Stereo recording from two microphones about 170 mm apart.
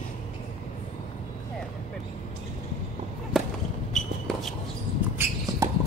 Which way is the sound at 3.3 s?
Centre (ahead or behind).